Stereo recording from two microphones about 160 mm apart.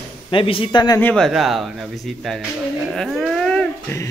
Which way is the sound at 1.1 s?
Centre (ahead or behind).